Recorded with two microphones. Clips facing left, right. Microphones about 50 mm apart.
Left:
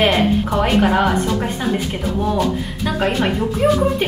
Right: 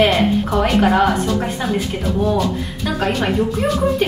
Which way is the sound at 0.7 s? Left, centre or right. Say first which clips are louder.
Right 1 dB; centre.